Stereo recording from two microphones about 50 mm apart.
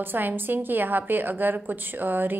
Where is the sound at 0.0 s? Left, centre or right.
Right.